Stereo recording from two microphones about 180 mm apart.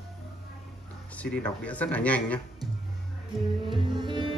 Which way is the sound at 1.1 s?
10° left (ahead or behind).